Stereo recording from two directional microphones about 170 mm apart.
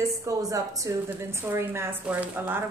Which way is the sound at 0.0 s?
20° right (ahead or behind).